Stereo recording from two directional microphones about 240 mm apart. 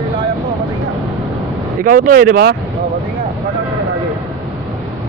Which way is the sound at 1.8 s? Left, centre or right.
Right.